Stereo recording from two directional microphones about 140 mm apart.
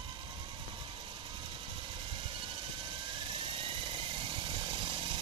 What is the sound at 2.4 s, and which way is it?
Vehicle, 40° right (ahead or behind).